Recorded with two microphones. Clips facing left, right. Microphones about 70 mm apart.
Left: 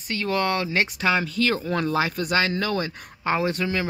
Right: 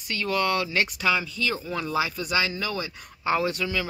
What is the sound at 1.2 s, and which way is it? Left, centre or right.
Speech, left.